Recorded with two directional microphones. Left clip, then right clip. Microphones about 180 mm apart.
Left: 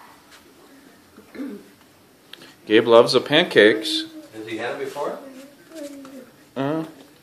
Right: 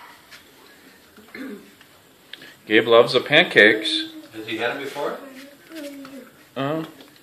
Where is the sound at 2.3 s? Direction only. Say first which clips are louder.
Left 1 dB; 20° left (ahead or behind).